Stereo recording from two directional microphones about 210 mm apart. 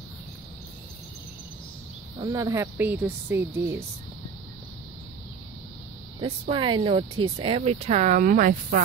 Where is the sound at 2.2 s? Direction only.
15° right (ahead or behind).